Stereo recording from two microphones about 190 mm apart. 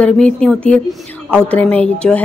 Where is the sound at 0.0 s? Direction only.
5° left (ahead or behind).